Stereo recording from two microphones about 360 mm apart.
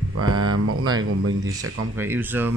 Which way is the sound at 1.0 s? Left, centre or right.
Right.